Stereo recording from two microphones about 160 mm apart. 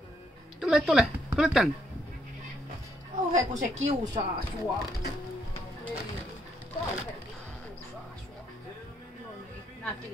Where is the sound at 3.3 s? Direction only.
45° right (ahead or behind).